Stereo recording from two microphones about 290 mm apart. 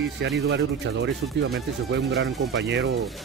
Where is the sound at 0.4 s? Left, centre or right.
Right.